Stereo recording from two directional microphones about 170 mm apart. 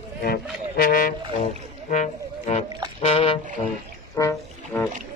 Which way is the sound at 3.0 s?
35° left (ahead or behind).